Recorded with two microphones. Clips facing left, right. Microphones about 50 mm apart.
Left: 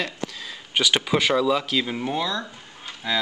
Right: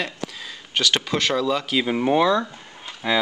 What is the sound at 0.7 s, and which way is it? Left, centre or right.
Speech, centre.